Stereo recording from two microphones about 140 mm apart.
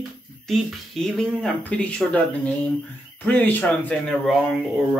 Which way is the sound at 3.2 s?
10° left (ahead or behind).